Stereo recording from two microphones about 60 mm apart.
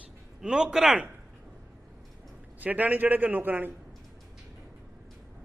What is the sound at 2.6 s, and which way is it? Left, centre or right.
A man's voice, right.